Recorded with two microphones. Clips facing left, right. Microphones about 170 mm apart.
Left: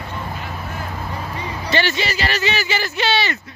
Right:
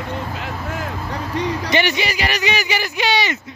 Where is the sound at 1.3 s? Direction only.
90° right.